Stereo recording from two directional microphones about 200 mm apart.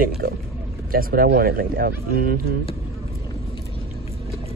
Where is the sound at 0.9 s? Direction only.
50° right (ahead or behind).